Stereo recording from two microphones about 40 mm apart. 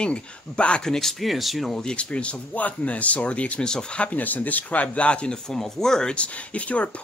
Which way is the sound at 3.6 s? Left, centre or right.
Centre.